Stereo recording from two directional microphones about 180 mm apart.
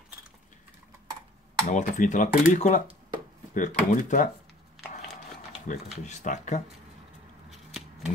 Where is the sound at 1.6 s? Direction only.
40° left (ahead or behind).